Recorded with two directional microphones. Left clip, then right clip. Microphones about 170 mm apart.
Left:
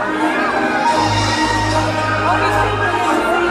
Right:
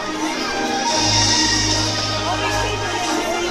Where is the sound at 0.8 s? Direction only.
45° left (ahead or behind).